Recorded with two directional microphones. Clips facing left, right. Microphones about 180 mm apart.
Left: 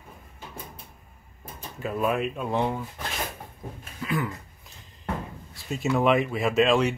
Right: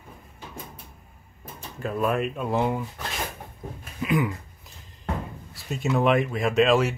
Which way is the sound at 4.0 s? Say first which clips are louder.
Right 4 dB; 15° right (ahead or behind).